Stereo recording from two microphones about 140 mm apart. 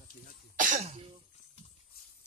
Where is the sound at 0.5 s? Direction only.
65° right (ahead or behind).